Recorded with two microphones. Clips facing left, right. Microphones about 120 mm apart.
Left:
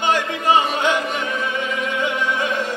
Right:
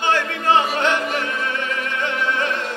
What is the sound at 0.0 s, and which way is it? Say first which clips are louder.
Music: left 1 dB; 15° left (ahead or behind).